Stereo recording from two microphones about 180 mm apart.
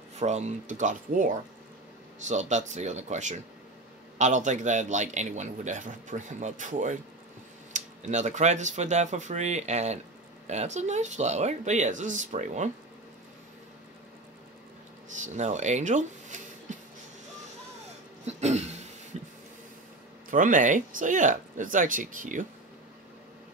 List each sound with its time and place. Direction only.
0.1 s a man's voice: 40° right (ahead or behind)
15.0 s speech: 45° right (ahead or behind)
16.7 s music: 45° right (ahead or behind)
18.2 s throat clearing: 40° right (ahead or behind)
20.2 s a man's voice: 45° right (ahead or behind)